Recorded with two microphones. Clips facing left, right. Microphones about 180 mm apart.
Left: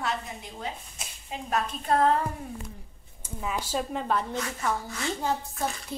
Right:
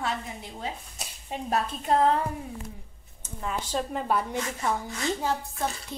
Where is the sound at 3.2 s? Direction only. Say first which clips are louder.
Even; 5° left (ahead or behind).